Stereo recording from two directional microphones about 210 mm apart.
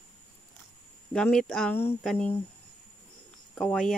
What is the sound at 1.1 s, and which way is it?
Speech, 5° left (ahead or behind).